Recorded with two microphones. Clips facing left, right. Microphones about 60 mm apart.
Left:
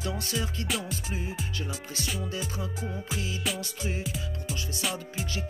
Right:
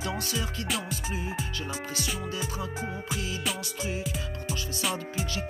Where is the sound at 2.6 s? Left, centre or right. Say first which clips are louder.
Right 1 dB; right.